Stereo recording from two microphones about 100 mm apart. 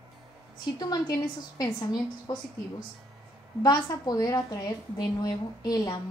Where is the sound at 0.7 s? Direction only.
40° left (ahead or behind).